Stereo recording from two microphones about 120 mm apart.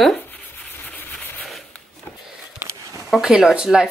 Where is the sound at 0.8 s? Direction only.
15° left (ahead or behind).